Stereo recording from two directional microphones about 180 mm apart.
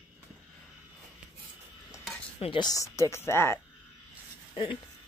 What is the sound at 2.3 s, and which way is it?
A woman's voice, 30° left (ahead or behind).